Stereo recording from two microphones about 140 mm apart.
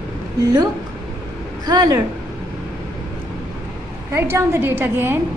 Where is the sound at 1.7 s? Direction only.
25° right (ahead or behind).